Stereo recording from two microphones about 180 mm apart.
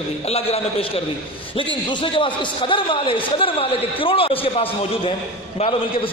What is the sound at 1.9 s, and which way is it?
A man's voice, 30° left (ahead or behind).